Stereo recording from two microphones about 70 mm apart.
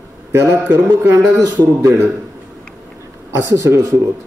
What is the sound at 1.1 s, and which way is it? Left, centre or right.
Speech, right.